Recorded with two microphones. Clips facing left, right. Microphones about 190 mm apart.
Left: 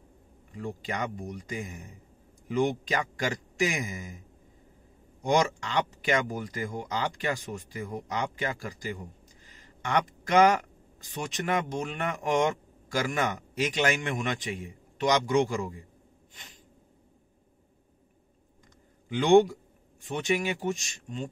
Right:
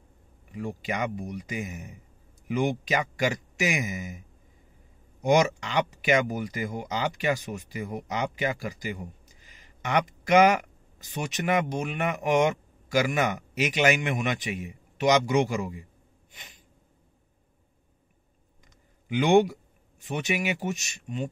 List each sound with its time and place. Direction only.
0.5 s speech: 15° right (ahead or behind)
5.2 s speech: 15° right (ahead or behind)
19.0 s speech: 10° right (ahead or behind)